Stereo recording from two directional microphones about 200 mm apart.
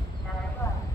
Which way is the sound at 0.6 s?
15° left (ahead or behind).